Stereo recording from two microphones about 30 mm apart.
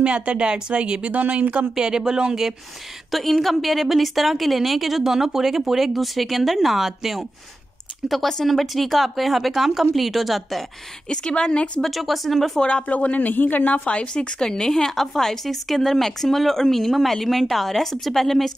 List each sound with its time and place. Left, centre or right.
0.0 s speech: right
1.0 s speech: right
1.8 s speech: right
3.1 s a woman's voice: centre
8.5 s a woman's voice: centre
11.1 s a woman's voice: left
11.9 s a woman's voice: centre
12.5 s a woman's voice: left
12.8 s a man's voice: left
13.8 s a woman's voice: left
14.4 s a woman's voice: left